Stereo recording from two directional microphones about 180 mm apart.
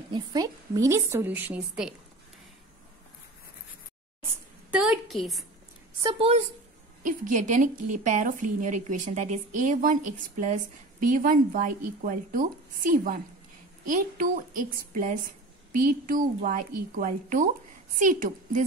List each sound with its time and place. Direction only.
0.1 s a woman's voice: 20° right (ahead or behind)
4.2 s a sound: 5° right (ahead or behind)
6.1 s speech: 35° right (ahead or behind)
7.0 s a woman's voice: 45° right (ahead or behind)